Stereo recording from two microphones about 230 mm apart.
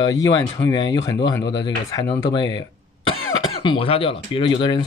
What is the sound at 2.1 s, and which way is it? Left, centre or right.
Speech, centre.